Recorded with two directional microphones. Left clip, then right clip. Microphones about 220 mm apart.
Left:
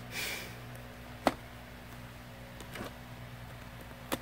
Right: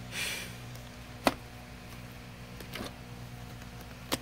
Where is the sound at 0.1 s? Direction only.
15° left (ahead or behind).